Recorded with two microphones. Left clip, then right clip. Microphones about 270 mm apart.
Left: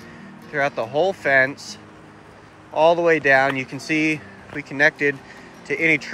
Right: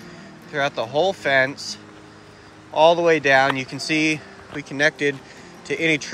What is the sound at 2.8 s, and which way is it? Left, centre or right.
Speech, centre.